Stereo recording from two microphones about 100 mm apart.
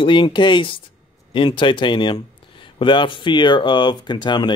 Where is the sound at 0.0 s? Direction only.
55° left (ahead or behind).